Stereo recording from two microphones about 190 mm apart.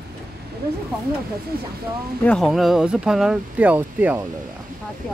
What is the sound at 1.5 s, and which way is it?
Speech, 50° right (ahead or behind).